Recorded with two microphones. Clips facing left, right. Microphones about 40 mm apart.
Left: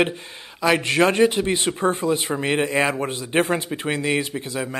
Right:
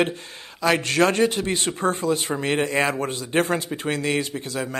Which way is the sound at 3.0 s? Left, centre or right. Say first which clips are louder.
Left 1 dB; centre.